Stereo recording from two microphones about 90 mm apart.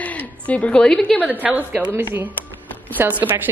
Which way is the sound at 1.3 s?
20° right (ahead or behind).